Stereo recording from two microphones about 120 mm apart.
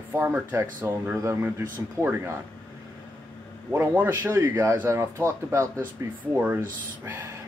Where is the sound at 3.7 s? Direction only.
20° right (ahead or behind).